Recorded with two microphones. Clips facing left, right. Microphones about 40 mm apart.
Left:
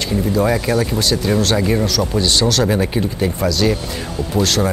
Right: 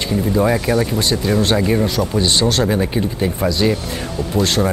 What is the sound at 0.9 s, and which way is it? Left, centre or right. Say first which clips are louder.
Speech: even; right.